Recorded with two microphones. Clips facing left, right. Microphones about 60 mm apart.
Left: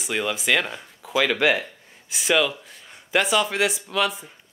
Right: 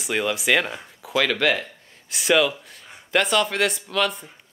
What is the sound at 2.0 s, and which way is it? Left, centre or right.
Speech, centre.